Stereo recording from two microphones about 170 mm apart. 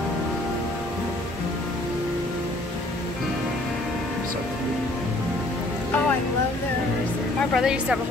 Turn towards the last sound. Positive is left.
turn(degrees=-5)  # may be behind; listen again after turning